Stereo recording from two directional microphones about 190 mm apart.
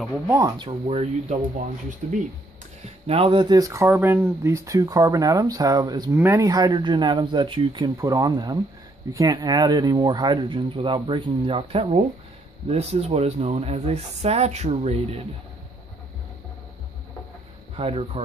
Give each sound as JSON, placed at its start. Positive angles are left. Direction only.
{"t": 0.3, "sound": "speech", "side_deg": -20}
{"t": 0.7, "sound": "speech", "side_deg": -35}
{"t": 17.7, "sound": "speech", "side_deg": -30}